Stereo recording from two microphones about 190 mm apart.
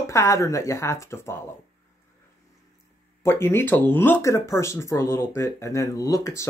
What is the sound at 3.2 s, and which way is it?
Speech, 10° left (ahead or behind).